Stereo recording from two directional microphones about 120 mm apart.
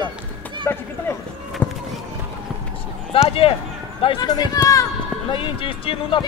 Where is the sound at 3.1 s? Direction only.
50° left (ahead or behind).